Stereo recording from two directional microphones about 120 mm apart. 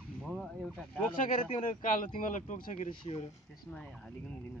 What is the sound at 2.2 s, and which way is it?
Speech, 90° left.